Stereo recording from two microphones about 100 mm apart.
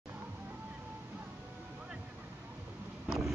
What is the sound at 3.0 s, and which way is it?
Vehicle, centre (ahead or behind).